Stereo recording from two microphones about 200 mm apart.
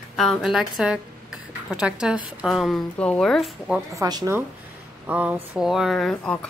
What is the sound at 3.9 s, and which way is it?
Speech, 15° right (ahead or behind).